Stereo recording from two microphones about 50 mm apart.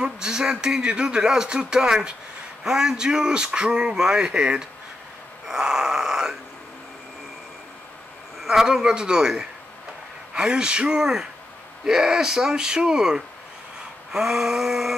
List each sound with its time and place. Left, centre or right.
0.0 s speech: centre
5.5 s a sound: centre
8.4 s speech: centre